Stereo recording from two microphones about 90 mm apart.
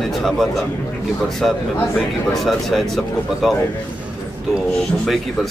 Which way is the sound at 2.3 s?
Centre (ahead or behind).